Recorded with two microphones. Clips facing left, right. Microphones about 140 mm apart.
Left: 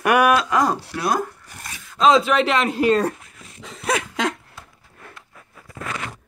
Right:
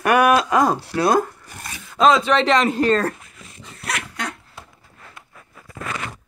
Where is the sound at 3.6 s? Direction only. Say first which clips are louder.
Left 6 dB; 90° left.